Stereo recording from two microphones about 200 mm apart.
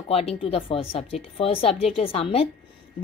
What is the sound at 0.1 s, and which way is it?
A woman's voice, 30° left (ahead or behind).